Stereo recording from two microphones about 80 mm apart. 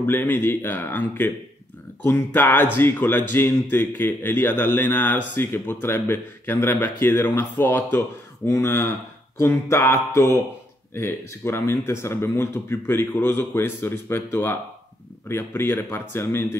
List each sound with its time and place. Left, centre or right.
0.0 s speech: left